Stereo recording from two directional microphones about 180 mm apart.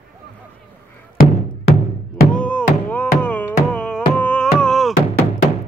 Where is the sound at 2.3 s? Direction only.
5° left (ahead or behind).